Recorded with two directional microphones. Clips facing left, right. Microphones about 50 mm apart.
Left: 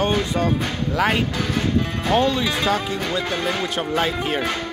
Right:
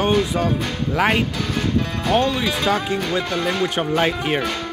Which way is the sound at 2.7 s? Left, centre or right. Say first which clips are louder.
Right 2 dB; right.